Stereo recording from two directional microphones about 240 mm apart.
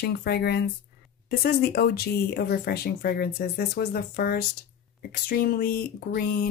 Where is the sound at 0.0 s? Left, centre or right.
Left.